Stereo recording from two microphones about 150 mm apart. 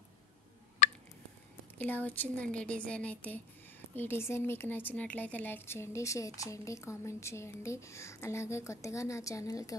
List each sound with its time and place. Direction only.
1.8 s speech: 10° left (ahead or behind)